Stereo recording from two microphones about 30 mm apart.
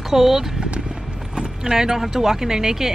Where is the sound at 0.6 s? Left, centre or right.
Right.